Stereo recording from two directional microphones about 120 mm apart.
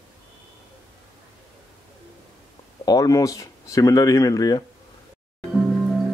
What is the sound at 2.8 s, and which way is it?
Speech, 30° left (ahead or behind).